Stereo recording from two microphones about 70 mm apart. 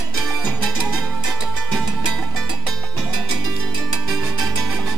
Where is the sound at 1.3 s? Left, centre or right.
Centre.